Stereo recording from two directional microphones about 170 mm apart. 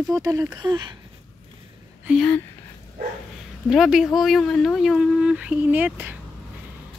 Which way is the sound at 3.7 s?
Centre (ahead or behind).